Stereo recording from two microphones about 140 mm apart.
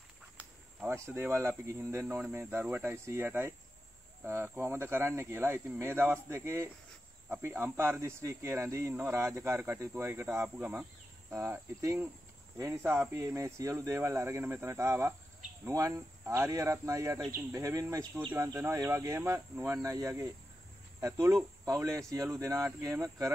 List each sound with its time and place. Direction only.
0.7 s speech: 20° right (ahead or behind)